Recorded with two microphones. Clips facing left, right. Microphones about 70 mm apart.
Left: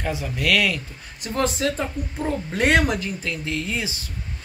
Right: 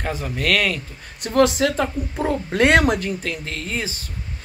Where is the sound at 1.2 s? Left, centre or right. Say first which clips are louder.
Right 7 dB; right.